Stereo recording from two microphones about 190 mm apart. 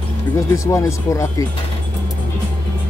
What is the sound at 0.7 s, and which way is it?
Speech, 15° left (ahead or behind).